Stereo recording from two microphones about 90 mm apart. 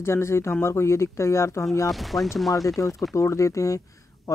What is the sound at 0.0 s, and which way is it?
Speech, 30° left (ahead or behind).